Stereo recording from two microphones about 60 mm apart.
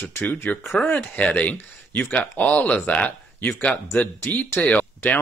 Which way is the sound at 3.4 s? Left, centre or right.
Left.